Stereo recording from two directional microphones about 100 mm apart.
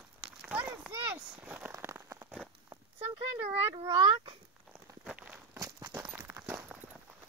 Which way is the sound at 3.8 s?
50° right (ahead or behind).